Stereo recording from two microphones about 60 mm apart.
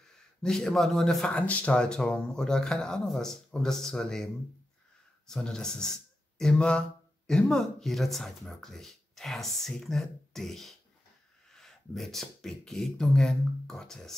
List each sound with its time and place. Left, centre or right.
0.4 s speech: centre
1.4 s speech: left
1.8 s speech: centre